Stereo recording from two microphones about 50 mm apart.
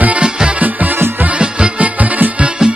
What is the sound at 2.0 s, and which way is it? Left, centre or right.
Music, right.